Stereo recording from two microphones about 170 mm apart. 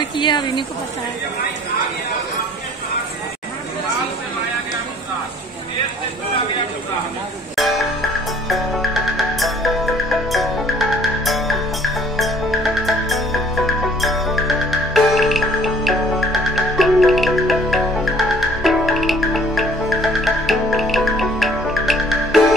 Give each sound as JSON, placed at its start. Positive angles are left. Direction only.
{"t": 0.2, "sound": "a woman's voice", "side_deg": 25}
{"t": 8.5, "sound": "music", "side_deg": 0}